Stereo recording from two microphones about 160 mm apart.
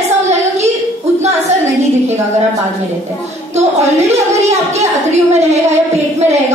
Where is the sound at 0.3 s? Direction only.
45° right (ahead or behind).